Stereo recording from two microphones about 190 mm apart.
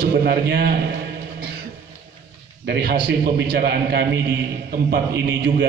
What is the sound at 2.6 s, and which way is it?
A man's voice, 55° right (ahead or behind).